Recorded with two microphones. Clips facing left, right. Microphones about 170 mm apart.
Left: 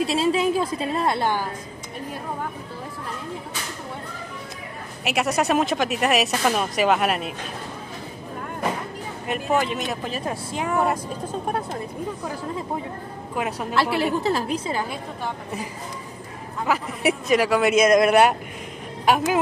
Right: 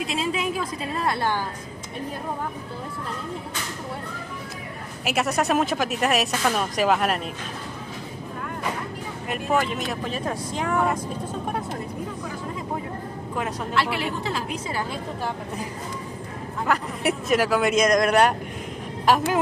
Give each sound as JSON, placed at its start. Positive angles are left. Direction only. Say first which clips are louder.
{"t": 0.0, "sound": "a woman's voice", "louder": "left 6 dB", "side_deg": 30}
{"t": 5.0, "sound": "speech", "louder": "left 1 dB", "side_deg": 0}
{"t": 9.3, "sound": "speech", "louder": "left 1 dB", "side_deg": 0}
{"t": 13.7, "sound": "a woman's voice", "louder": "left 5 dB", "side_deg": 40}
{"t": 16.6, "sound": "speech", "louder": "left 2 dB", "side_deg": 0}